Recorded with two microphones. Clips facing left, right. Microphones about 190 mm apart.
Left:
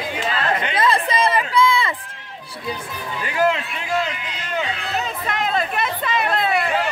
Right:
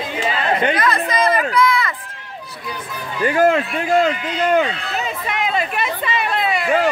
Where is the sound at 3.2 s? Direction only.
50° right (ahead or behind).